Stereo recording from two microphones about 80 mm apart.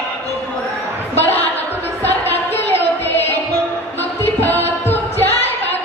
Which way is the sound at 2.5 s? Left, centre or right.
Left.